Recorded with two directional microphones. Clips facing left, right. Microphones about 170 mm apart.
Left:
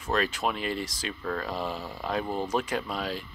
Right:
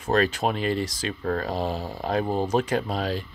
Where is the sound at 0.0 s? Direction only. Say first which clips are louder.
Right 5 dB; 40° right (ahead or behind).